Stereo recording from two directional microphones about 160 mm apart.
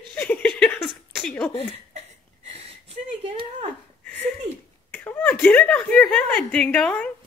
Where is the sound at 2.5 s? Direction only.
40° right (ahead or behind).